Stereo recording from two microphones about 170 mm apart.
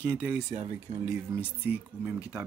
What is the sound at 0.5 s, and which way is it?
Speech, 35° right (ahead or behind).